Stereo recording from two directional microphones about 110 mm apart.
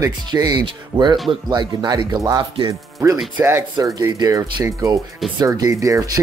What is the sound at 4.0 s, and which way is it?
Speech, 35° right (ahead or behind).